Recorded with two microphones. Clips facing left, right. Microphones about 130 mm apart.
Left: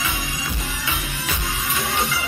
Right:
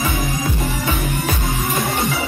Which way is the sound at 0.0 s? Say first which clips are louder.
Right 7 dB; 50° right (ahead or behind).